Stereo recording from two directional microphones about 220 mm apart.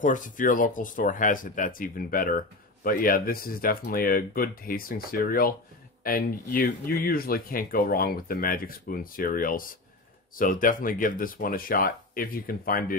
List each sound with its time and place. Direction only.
0.0 s speech: 35° left (ahead or behind)